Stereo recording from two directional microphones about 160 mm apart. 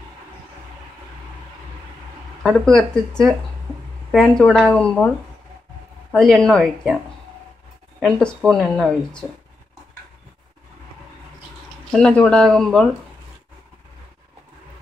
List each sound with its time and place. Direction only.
2.4 s speech: 5° left (ahead or behind)
4.4 s speech: 5° left (ahead or behind)
6.1 s speech: 5° left (ahead or behind)
8.0 s speech: 5° left (ahead or behind)
11.9 s speech: 5° left (ahead or behind)